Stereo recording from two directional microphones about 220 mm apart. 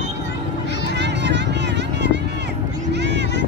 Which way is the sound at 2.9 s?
50° right (ahead or behind).